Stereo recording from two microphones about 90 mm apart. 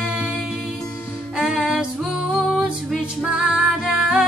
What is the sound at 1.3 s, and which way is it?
Music, 10° right (ahead or behind).